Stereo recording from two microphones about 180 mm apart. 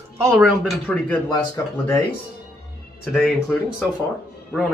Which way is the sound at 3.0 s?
Centre (ahead or behind).